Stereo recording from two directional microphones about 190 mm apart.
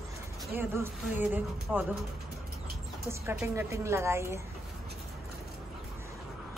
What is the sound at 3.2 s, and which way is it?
Speech, 10° right (ahead or behind).